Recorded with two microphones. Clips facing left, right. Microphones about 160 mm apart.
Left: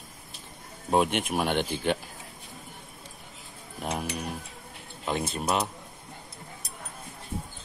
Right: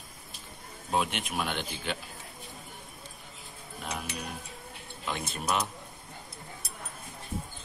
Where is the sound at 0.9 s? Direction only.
50° left (ahead or behind).